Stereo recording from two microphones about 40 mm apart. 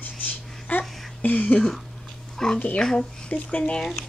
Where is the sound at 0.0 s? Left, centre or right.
Left.